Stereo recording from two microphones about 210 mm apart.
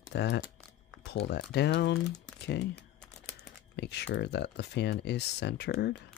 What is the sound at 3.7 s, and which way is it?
Speech, 55° left (ahead or behind).